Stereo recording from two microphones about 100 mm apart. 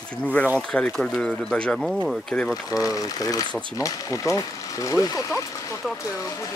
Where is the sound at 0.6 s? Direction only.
10° left (ahead or behind).